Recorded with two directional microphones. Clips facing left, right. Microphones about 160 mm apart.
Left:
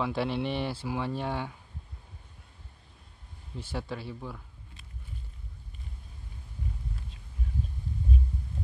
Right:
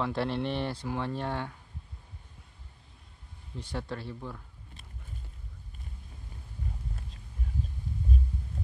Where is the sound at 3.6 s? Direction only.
5° left (ahead or behind).